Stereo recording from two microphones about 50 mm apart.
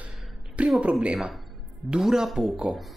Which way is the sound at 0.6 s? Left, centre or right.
Right.